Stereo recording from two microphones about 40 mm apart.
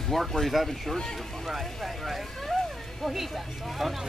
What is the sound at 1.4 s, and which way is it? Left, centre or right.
Speech, centre.